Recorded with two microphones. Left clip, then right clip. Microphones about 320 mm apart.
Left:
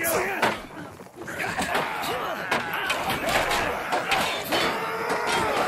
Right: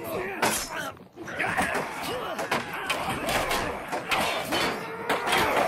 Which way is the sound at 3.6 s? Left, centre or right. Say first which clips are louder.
Left 5 dB; centre.